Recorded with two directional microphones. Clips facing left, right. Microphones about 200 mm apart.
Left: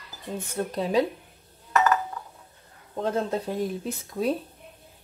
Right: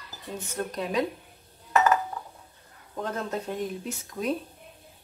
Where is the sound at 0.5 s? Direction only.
30° left (ahead or behind).